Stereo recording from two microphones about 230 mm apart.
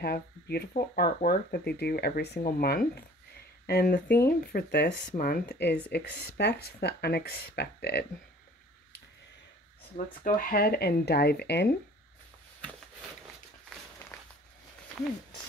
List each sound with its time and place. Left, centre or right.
0.0 s speech: left
9.9 s speech: left